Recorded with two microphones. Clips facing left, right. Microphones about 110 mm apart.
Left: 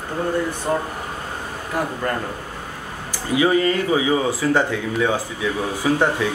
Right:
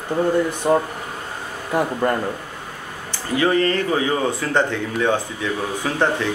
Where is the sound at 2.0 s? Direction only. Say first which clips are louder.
Right 5 dB; 20° right (ahead or behind).